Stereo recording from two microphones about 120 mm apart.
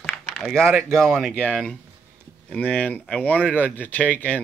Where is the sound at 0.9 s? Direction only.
5° left (ahead or behind).